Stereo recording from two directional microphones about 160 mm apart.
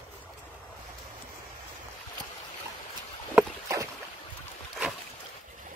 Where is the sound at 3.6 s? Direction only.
20° right (ahead or behind).